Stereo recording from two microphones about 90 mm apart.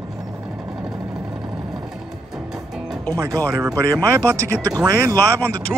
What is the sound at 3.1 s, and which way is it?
Speech, 35° right (ahead or behind).